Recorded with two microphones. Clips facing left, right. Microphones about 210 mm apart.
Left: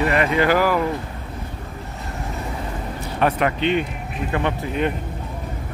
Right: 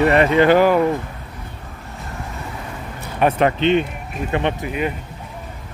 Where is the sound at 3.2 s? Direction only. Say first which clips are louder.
Right 3 dB; 25° right (ahead or behind).